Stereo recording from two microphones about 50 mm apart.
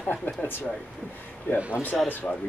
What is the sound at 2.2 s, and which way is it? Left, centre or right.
Speech, left.